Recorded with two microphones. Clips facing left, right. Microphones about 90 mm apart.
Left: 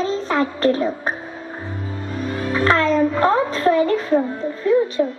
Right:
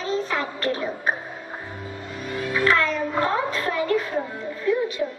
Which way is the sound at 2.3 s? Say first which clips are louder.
Left 3 dB; 35° left (ahead or behind).